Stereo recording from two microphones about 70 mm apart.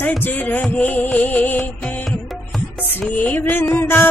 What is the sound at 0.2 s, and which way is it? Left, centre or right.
Music, left.